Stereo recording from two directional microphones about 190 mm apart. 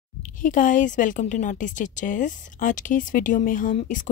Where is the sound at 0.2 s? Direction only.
45° left (ahead or behind).